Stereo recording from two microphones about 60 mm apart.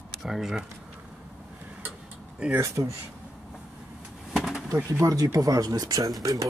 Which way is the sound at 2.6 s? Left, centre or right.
Right.